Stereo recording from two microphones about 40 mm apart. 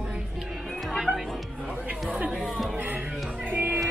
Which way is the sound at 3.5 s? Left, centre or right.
Right.